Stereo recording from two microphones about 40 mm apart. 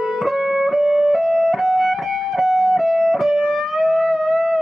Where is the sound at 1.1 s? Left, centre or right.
Centre.